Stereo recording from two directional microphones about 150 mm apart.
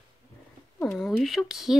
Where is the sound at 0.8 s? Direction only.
Centre (ahead or behind).